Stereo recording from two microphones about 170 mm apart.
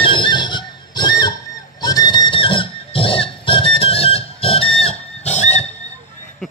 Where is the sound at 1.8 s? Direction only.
25° left (ahead or behind).